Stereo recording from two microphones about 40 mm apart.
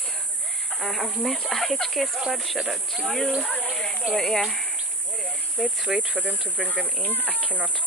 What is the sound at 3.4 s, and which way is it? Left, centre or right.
Speech, left.